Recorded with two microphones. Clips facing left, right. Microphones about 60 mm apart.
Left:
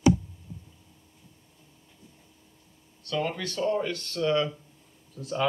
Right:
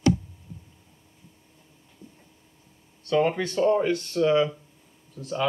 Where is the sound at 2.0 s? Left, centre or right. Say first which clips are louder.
Right 7 dB; right.